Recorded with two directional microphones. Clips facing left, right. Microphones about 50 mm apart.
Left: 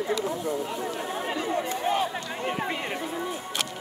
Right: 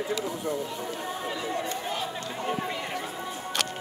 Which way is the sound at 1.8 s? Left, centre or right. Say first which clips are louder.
Left 6 dB; left.